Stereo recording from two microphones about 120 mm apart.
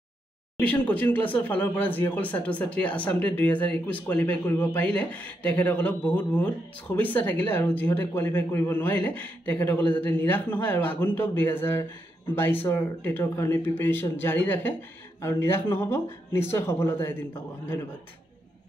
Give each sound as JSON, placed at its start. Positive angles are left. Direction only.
{"t": 0.6, "sound": "speech", "side_deg": 10}